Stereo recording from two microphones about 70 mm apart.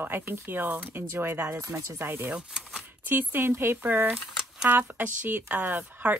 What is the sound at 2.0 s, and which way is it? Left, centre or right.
A woman's voice, right.